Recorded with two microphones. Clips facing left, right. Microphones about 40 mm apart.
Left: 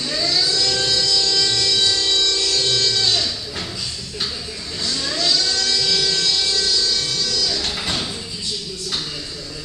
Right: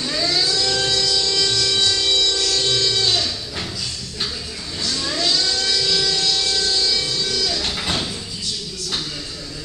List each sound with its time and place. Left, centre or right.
0.0 s music: centre
3.0 s guitar: centre
5.0 s music: centre
6.7 s music: right
7.5 s a sound: centre